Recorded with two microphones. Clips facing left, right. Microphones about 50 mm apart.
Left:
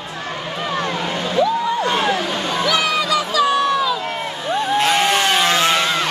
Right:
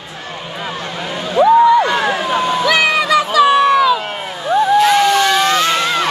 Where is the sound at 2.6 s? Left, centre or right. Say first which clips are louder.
Right 2 dB; right.